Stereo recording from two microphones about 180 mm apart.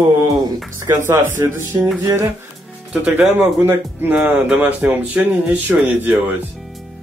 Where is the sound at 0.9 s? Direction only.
15° right (ahead or behind).